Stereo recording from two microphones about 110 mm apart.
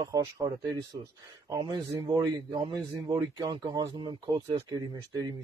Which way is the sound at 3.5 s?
40° right (ahead or behind).